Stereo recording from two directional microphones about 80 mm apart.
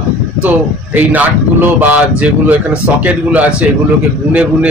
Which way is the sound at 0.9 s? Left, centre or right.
Right.